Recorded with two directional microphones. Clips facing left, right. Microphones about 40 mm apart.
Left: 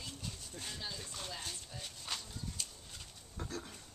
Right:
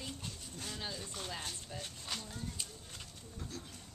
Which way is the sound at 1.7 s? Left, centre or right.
Centre.